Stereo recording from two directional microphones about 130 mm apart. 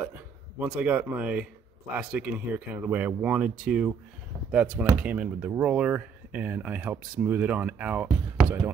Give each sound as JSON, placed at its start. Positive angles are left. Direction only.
{"t": 0.0, "sound": "speech", "side_deg": -10}